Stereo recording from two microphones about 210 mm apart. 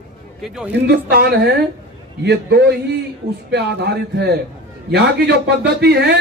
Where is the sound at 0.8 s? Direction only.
55° right (ahead or behind).